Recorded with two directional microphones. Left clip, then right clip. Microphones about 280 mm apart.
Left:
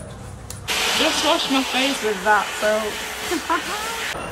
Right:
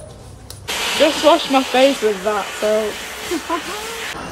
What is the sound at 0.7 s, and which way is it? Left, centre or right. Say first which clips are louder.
A man's voice: right 3 dB; centre.